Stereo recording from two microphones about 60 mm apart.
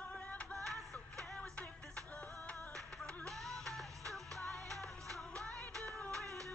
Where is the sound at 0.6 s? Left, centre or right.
Right.